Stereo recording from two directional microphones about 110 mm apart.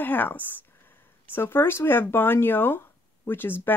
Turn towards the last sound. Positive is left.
turn(degrees=20)  # may be behind; listen again after turning